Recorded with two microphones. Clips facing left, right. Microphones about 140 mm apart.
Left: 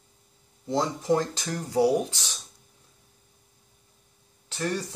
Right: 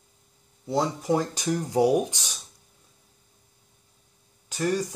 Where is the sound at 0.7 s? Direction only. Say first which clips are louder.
Even; 10° right (ahead or behind).